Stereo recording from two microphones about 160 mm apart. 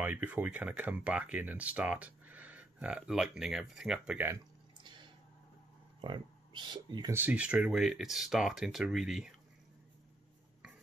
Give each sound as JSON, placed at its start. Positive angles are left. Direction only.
{"t": 0.0, "sound": "speech", "side_deg": -10}
{"t": 4.8, "sound": "a sound", "side_deg": -30}
{"t": 5.9, "sound": "speech", "side_deg": -30}
{"t": 7.1, "sound": "speech", "side_deg": -10}